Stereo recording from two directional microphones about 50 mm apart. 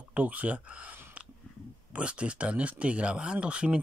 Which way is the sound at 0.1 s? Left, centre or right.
Right.